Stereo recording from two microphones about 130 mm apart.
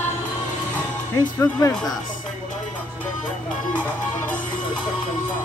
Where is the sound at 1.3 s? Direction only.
20° left (ahead or behind).